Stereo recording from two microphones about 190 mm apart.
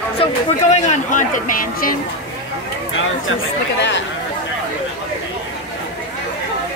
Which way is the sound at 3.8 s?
75° left (ahead or behind).